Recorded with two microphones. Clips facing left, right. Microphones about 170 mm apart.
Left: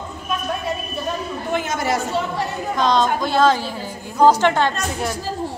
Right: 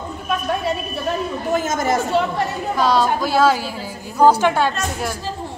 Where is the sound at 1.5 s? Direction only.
45° right (ahead or behind).